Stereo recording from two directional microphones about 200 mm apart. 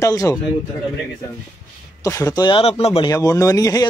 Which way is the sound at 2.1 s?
15° left (ahead or behind).